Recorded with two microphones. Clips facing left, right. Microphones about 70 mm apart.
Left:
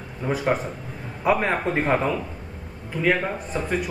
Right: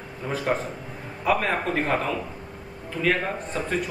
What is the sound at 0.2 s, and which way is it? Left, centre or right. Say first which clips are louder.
A man's voice: left 3 dB; centre.